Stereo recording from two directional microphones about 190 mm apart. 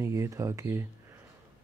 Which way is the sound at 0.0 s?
15° right (ahead or behind).